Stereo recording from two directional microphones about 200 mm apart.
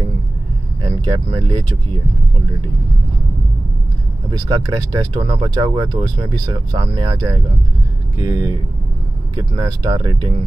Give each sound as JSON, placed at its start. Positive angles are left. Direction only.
{"t": 0.8, "sound": "speech", "side_deg": -25}
{"t": 4.3, "sound": "speech", "side_deg": -20}